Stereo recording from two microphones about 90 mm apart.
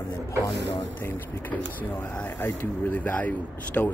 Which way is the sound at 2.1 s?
20° left (ahead or behind).